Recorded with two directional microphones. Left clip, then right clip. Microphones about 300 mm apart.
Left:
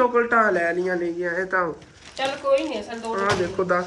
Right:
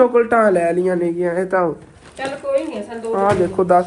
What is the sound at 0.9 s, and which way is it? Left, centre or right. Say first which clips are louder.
Speech: right 6 dB; centre.